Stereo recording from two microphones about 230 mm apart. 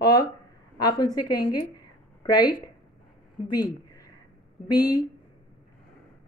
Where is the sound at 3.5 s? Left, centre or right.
Centre.